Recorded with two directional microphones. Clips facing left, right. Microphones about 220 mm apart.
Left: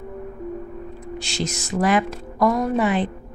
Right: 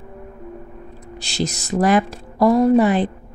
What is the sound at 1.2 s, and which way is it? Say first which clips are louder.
Speech: right 5 dB; 35° right (ahead or behind).